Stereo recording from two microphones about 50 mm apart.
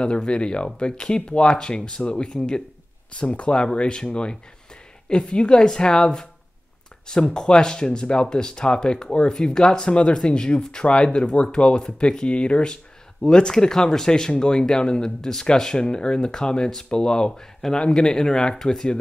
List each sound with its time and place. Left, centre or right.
0.0 s speech: left
7.3 s speech: centre